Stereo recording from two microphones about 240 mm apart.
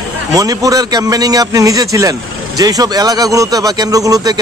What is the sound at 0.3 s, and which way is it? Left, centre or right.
Speech, centre.